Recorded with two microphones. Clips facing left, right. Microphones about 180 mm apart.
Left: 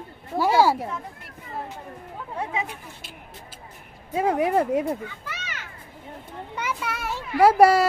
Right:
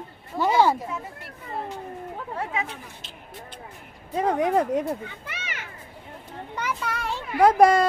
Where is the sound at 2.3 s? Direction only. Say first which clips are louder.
Left 2 dB; 10° left (ahead or behind).